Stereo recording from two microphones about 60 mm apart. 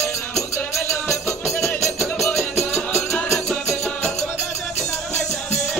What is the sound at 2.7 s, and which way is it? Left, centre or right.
Music, left.